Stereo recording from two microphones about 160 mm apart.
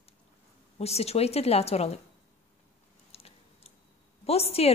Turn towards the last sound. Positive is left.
turn(degrees=40)  # may be behind; listen again after turning